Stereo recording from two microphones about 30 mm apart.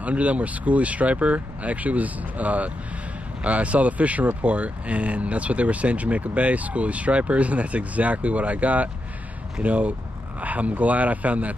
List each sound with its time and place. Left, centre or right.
0.0 s speech: right